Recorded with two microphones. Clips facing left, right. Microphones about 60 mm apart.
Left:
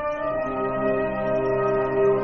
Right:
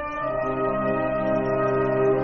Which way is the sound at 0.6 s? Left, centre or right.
Centre.